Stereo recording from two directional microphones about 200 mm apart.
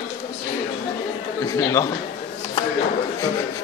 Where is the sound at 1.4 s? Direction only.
15° left (ahead or behind).